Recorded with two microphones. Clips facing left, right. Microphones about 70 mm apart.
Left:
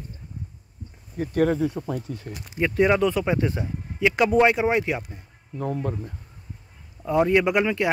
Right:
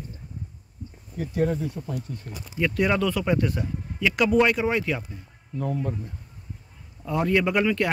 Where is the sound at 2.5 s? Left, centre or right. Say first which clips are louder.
Left 3 dB; left.